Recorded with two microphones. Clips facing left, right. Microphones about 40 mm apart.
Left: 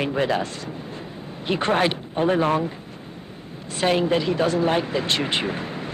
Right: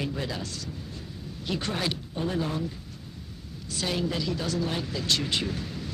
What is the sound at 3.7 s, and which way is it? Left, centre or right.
Speech, left.